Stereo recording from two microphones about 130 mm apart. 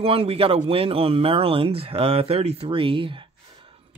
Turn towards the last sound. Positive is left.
turn(degrees=-40)  # may be behind; listen again after turning